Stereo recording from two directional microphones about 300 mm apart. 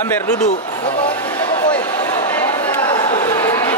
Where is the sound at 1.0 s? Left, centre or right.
Centre.